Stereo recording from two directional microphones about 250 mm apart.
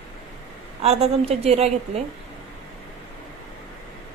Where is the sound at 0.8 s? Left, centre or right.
Right.